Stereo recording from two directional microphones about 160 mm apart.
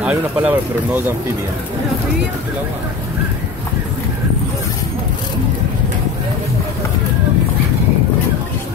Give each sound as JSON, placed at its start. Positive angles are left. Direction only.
{"t": 0.0, "sound": "speech", "side_deg": -5}